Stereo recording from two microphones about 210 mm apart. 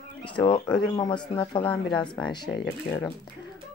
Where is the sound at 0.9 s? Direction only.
20° left (ahead or behind).